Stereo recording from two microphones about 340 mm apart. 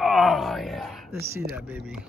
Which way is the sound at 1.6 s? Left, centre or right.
Centre.